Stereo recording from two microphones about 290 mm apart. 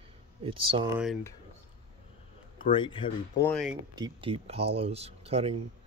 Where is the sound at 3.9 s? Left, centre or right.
Centre.